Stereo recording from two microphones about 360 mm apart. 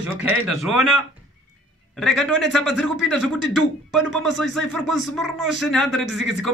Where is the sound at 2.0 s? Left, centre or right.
Centre.